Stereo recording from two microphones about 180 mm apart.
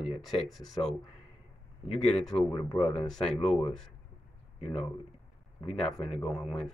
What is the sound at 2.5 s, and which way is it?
Speech, 25° left (ahead or behind).